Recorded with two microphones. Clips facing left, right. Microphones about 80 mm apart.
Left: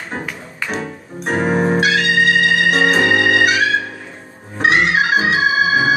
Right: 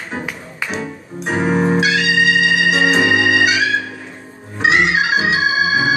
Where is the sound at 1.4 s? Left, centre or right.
Left.